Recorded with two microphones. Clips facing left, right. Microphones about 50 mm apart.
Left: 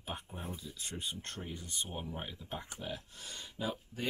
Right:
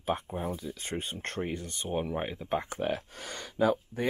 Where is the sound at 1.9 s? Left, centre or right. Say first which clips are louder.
Right 11 dB; right.